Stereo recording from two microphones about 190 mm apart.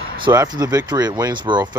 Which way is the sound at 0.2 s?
20° right (ahead or behind).